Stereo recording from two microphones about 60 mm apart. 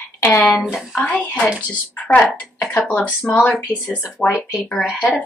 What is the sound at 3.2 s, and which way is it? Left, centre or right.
Speech, left.